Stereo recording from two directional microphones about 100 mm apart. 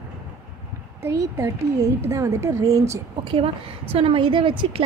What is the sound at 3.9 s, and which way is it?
Speech, 65° right (ahead or behind).